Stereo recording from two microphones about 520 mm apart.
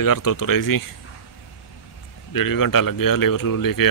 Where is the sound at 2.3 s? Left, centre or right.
Left.